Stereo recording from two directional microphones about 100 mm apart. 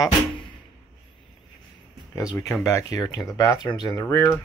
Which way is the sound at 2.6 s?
35° left (ahead or behind).